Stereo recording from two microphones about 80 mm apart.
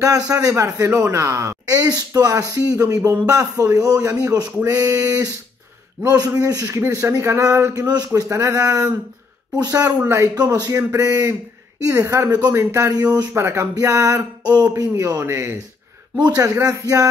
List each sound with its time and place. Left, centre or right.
0.0 s a man's voice: right
9.8 s speech: right
10.3 s a man's voice: right
12.9 s speech: right
13.3 s a man's voice: right
13.7 s a man's voice: right
16.2 s speech: right